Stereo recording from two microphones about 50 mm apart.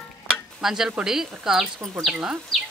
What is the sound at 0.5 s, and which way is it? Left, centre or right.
Stir, centre.